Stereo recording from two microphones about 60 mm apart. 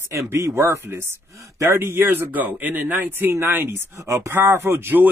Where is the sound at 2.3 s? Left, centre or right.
Right.